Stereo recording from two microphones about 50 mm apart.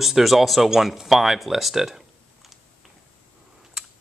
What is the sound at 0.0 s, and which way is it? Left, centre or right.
Speech, centre.